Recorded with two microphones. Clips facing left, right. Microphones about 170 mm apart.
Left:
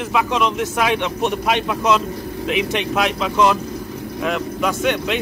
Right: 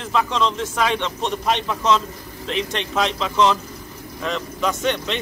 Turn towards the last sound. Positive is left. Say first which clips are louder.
# left 3 dB
turn(degrees=10)  # may be behind; listen again after turning